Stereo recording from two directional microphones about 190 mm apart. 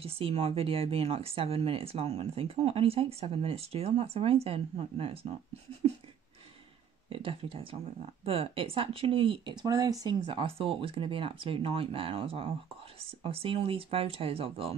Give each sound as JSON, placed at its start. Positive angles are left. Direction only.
{"t": 0.0, "sound": "speech", "side_deg": -30}
{"t": 7.1, "sound": "speech", "side_deg": -30}